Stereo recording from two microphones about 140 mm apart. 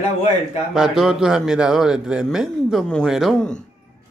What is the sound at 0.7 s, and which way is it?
A man's voice, 5° right (ahead or behind).